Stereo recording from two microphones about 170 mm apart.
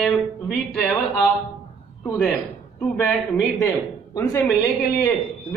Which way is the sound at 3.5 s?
20° left (ahead or behind).